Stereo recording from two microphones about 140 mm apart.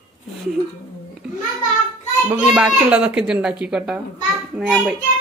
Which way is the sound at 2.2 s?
5° right (ahead or behind).